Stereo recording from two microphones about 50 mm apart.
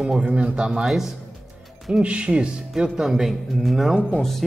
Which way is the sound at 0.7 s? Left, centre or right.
Centre.